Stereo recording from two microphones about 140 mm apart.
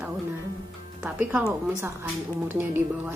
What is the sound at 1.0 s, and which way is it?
Speech, 10° right (ahead or behind).